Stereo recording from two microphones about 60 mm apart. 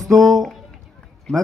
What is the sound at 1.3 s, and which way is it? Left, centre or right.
Speech, centre.